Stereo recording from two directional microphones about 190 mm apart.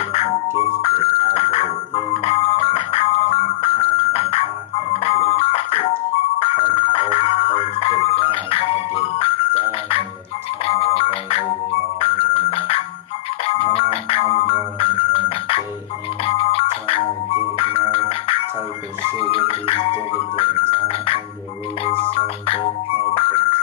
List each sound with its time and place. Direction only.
0.8 s music: 30° left (ahead or behind)
10.6 s ringtone: 30° left (ahead or behind)
13.5 s music: 30° left (ahead or behind)